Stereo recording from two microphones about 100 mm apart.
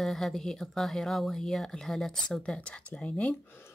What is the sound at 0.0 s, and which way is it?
Speech, 5° left (ahead or behind).